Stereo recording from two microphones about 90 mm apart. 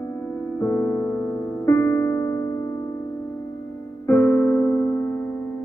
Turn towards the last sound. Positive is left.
turn(degrees=10)  # may be behind; listen again after turning